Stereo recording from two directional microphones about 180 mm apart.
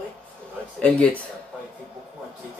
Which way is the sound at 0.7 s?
5° left (ahead or behind).